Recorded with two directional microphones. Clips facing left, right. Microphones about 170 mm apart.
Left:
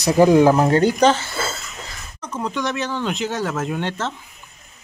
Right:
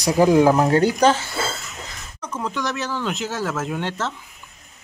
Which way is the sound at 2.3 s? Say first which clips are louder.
Left 2 dB; 15° left (ahead or behind).